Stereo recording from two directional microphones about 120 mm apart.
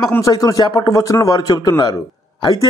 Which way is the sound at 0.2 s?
30° left (ahead or behind).